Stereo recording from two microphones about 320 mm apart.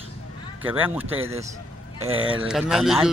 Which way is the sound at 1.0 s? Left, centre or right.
Centre.